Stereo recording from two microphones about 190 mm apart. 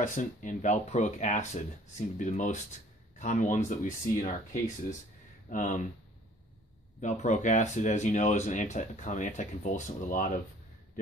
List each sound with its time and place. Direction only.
0.0 s speech: 45° left (ahead or behind)
7.0 s speech: 40° left (ahead or behind)